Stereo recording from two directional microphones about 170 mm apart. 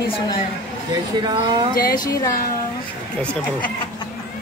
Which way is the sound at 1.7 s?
60° left (ahead or behind).